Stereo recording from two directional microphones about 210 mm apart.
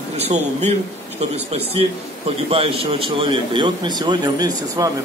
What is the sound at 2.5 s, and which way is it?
A man's voice, 25° right (ahead or behind).